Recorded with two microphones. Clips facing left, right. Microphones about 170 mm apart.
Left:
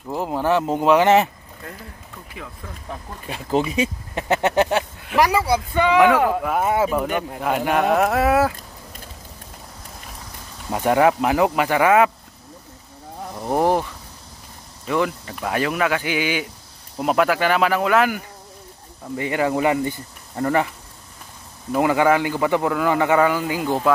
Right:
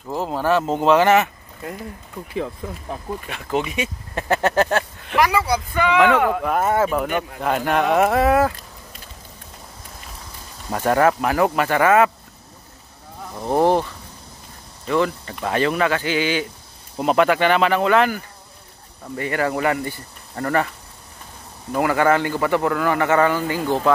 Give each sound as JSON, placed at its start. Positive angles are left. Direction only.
{"t": 0.1, "sound": "a man's voice", "side_deg": 15}
{"t": 2.6, "sound": "speech", "side_deg": -20}
{"t": 3.3, "sound": "speech", "side_deg": 30}
{"t": 4.1, "sound": "speech", "side_deg": 20}
{"t": 5.5, "sound": "speech", "side_deg": 25}
{"t": 5.9, "sound": "a man's voice", "side_deg": 10}
{"t": 10.7, "sound": "a man's voice", "side_deg": 15}
{"t": 13.4, "sound": "a man's voice", "side_deg": 10}
{"t": 14.9, "sound": "a man's voice", "side_deg": 10}
{"t": 19.1, "sound": "a man's voice", "side_deg": 15}
{"t": 21.7, "sound": "a man's voice", "side_deg": 15}